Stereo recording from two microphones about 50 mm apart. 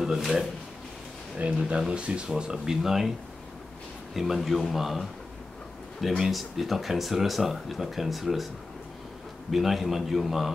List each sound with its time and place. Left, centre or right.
0.0 s speech: centre
1.4 s speech: right; by 3.1 s centre
4.1 s speech: centre
9.5 s speech: centre